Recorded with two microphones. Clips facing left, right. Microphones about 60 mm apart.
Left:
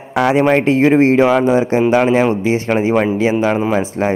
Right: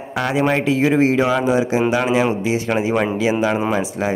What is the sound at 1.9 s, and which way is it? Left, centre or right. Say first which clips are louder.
Speech: left 7 dB; left.